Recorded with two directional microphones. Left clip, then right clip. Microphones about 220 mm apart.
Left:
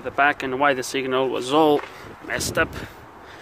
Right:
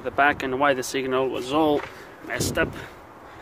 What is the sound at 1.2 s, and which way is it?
Speech, 25° left (ahead or behind).